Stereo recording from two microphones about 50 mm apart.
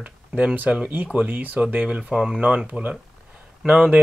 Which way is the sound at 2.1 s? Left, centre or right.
Centre.